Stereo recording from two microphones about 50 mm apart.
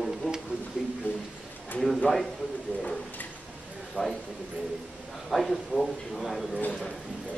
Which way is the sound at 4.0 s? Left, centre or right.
Left.